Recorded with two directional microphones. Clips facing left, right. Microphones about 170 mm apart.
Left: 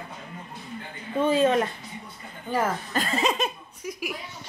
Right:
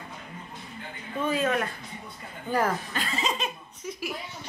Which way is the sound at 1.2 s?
30° left (ahead or behind).